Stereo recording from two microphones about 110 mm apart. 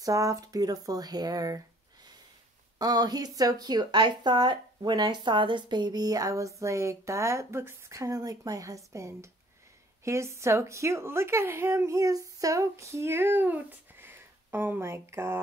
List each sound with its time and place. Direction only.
0.0 s speech: 30° right (ahead or behind)
2.8 s a woman's voice: 35° right (ahead or behind); by 15.3 s 20° right (ahead or behind)